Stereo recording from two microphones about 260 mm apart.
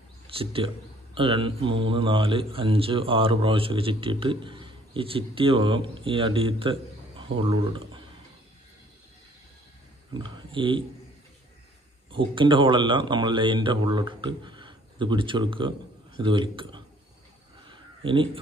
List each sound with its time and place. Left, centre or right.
0.3 s a man's voice: right
10.1 s speech: centre
12.1 s speech: centre
17.6 s a sound: centre